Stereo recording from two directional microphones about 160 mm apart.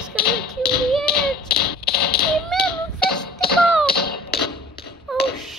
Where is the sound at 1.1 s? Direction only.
75° left (ahead or behind).